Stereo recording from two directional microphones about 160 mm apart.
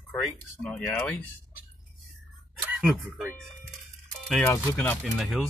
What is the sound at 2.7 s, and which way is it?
Speech, 10° right (ahead or behind).